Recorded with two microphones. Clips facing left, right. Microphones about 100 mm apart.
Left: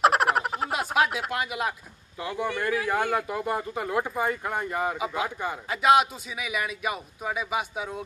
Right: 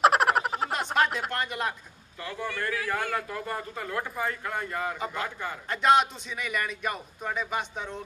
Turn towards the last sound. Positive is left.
turn(degrees=10)  # may be behind; listen again after turning